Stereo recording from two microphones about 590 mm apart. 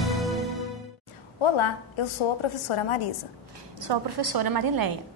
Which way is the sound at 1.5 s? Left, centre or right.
Left.